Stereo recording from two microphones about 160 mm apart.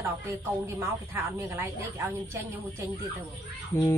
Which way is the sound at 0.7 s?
15° right (ahead or behind).